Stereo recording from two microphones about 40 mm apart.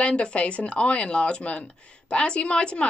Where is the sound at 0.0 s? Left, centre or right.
Left.